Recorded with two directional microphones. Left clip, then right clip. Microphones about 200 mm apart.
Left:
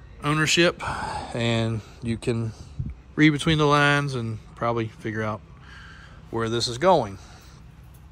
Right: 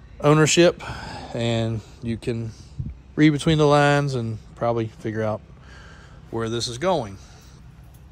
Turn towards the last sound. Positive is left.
turn(degrees=-10)  # may be behind; listen again after turning